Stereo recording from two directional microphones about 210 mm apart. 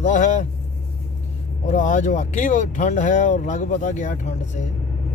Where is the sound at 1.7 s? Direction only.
35° left (ahead or behind).